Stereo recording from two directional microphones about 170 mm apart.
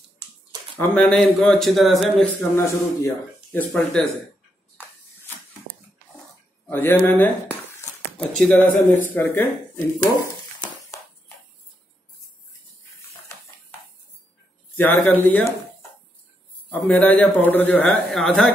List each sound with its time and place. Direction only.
0.7 s speech: 5° left (ahead or behind)
2.5 s a man's voice: 15° left (ahead or behind)
6.7 s a man's voice: 10° left (ahead or behind)
14.8 s a man's voice: 10° left (ahead or behind)
16.8 s a man's voice: 5° left (ahead or behind)